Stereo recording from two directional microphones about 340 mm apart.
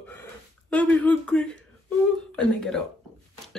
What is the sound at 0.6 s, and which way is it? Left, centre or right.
Speech, centre.